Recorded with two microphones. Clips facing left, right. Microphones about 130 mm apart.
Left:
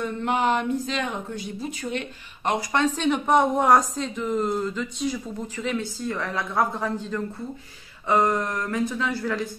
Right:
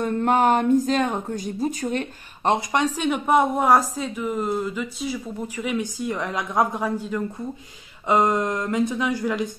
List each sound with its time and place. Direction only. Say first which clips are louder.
0.0 s speech: right 5 dB; 45° right (ahead or behind)
2.7 s a woman's voice: even; 10° right (ahead or behind)